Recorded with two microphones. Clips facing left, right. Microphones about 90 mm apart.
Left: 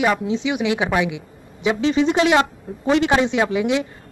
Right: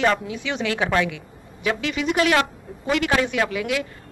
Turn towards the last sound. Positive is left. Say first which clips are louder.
# left 4 dB
turn(degrees=25)  # may be behind; listen again after turning